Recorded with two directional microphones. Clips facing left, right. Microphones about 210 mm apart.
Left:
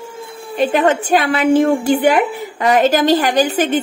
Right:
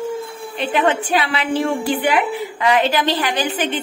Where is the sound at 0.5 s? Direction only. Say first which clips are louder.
Left 4 dB; 45° left (ahead or behind).